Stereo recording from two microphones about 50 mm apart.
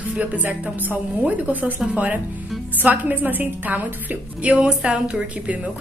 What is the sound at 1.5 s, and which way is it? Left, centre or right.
Speech, right.